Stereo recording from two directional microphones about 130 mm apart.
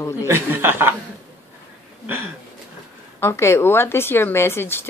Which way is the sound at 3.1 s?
20° left (ahead or behind).